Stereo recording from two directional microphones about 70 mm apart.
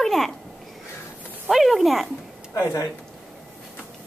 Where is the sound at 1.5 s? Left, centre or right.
Centre.